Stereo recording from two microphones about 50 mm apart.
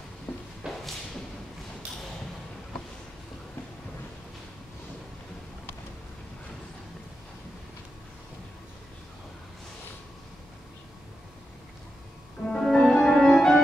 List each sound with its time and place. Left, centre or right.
0.3 s a sound: left
0.6 s thump: centre
12.4 s music: centre